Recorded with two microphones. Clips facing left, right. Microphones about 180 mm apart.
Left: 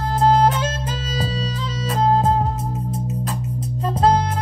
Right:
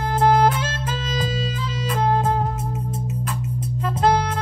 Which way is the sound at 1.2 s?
30° left (ahead or behind).